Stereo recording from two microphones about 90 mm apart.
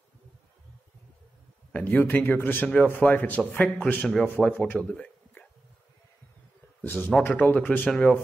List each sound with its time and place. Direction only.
1.7 s speech: 15° left (ahead or behind)
6.8 s a man's voice: 20° left (ahead or behind)